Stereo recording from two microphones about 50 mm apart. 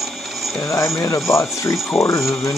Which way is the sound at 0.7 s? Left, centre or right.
Left.